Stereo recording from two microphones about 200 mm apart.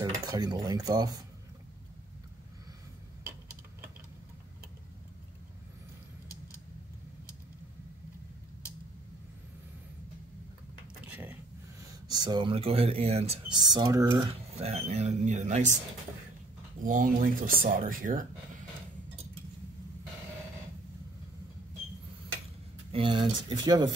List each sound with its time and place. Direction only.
0.0 s dishes: 20° right (ahead or behind)
11.1 s a sound: 10° right (ahead or behind)
12.1 s speech: 20° right (ahead or behind); by 15.7 s 35° right (ahead or behind)
16.8 s speech: 45° right (ahead or behind)
22.8 s speech: 25° right (ahead or behind)